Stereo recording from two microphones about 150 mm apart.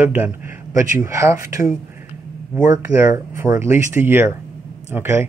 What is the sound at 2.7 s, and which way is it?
Speech, 15° right (ahead or behind).